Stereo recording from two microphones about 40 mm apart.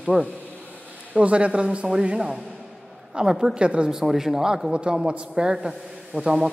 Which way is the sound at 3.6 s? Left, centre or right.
Right.